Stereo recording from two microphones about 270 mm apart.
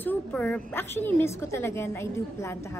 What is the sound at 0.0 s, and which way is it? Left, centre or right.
A woman's voice, centre.